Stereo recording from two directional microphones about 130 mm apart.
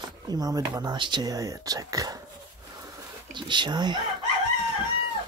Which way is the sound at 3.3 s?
35° right (ahead or behind).